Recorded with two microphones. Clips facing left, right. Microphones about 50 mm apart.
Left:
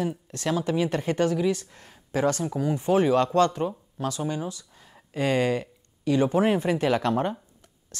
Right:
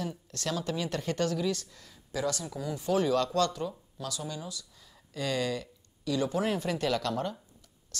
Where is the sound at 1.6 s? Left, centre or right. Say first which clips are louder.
Left 4 dB; left.